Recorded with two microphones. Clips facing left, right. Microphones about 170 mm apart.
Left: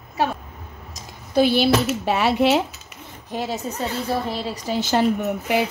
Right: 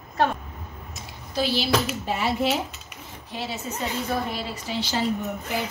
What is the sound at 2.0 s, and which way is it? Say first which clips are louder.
Speech: left 6 dB; 70° left (ahead or behind).